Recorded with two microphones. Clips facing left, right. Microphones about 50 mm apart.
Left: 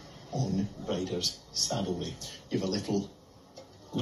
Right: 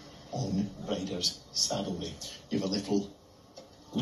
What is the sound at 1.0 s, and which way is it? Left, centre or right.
A man's voice, centre.